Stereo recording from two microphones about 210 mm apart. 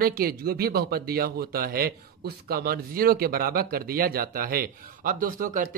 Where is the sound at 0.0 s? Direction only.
45° right (ahead or behind).